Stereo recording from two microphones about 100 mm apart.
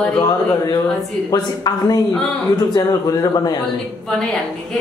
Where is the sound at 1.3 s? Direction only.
45° left (ahead or behind).